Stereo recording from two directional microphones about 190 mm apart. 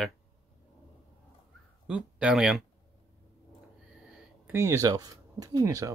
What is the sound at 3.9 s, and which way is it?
Speech, 5° right (ahead or behind).